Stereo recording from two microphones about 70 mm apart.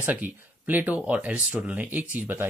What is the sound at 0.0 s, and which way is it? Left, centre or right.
Speech, right.